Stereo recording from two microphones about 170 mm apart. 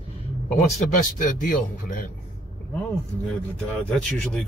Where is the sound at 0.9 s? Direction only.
50° left (ahead or behind).